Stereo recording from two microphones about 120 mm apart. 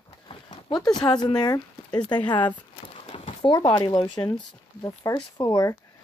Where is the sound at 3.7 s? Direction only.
35° left (ahead or behind).